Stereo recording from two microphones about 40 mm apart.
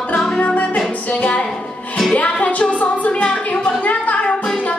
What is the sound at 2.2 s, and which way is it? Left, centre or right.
A woman's voice, left.